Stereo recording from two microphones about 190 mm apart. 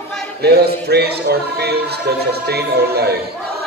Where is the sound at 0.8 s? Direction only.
60° right (ahead or behind).